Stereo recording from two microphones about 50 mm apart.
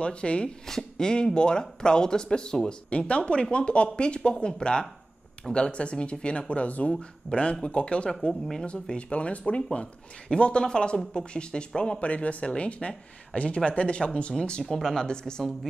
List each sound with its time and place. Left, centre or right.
0.0 s speech: left
8.3 s speech: centre
8.6 s speech: centre
12.0 s speech: left
14.6 s speech: centre